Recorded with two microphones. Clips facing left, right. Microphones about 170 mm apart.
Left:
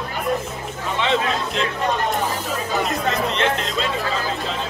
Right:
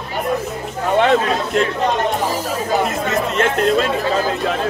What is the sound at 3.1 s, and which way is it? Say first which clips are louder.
Chatter: right 3 dB; 50° right (ahead or behind).